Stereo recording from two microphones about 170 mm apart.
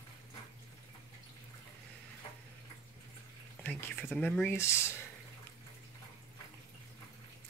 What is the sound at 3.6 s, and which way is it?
Speech, centre (ahead or behind).